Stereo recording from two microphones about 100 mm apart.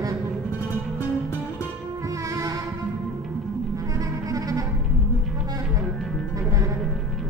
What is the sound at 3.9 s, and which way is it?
Music, 35° right (ahead or behind).